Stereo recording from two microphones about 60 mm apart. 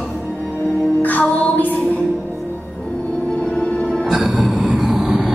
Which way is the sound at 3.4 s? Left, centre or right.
Centre.